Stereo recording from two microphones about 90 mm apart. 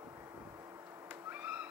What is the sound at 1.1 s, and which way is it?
Cat, 20° right (ahead or behind).